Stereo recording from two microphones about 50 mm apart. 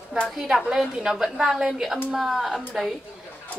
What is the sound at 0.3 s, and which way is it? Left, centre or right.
A woman's voice, centre.